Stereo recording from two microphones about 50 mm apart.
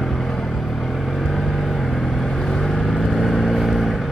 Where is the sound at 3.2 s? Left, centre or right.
Centre.